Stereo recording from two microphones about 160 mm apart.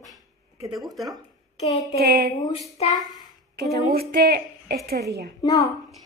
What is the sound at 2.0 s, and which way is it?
Speech, 90° right.